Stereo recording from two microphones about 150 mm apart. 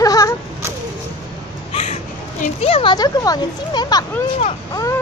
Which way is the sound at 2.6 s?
35° left (ahead or behind).